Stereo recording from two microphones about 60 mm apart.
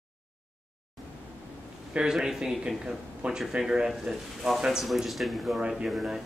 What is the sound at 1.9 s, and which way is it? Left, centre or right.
Speech, centre.